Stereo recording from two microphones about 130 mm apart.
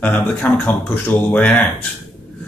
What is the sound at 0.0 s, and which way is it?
A man's voice, 15° left (ahead or behind).